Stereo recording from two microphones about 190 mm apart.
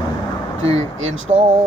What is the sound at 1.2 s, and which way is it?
Speech, 35° right (ahead or behind).